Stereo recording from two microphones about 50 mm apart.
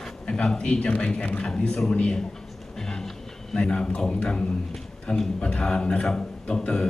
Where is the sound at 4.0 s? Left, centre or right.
Centre.